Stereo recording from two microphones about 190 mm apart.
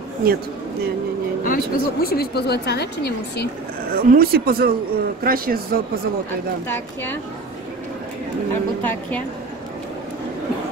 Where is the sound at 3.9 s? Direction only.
50° right (ahead or behind).